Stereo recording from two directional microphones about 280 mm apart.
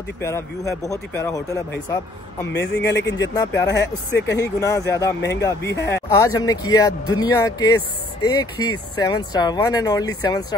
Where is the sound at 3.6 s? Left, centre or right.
Left.